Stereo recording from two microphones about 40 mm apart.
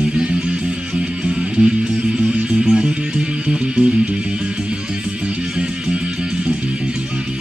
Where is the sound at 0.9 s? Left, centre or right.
Centre.